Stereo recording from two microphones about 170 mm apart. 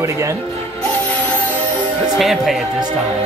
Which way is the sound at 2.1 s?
Centre (ahead or behind).